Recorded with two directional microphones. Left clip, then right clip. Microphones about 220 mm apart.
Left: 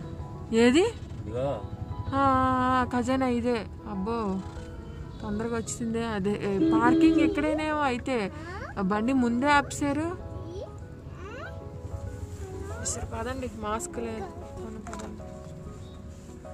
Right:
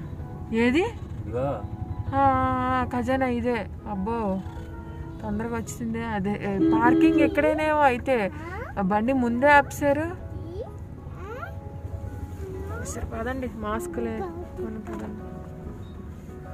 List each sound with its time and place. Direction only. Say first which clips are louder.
0.5 s speech: left 2 dB; 25° left (ahead or behind)
2.0 s speech: right 2 dB; 20° left (ahead or behind)
12.9 s speech: right 4 dB; 5° left (ahead or behind)